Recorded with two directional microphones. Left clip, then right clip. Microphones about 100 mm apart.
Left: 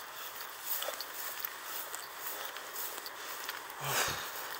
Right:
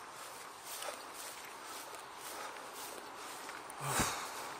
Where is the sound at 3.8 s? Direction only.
20° right (ahead or behind).